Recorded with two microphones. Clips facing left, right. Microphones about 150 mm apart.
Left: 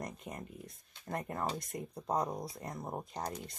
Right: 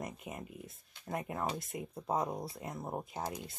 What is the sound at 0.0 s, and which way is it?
Speech, 5° right (ahead or behind).